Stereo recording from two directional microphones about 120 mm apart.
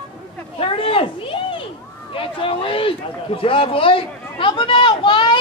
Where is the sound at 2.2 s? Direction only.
50° left (ahead or behind).